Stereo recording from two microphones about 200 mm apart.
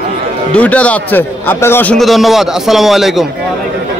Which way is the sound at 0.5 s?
5° left (ahead or behind).